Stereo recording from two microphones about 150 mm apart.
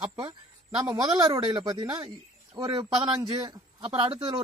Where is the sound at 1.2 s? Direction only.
30° right (ahead or behind).